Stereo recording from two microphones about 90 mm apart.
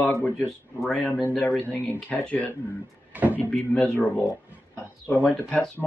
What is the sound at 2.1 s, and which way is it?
Speech, 15° left (ahead or behind).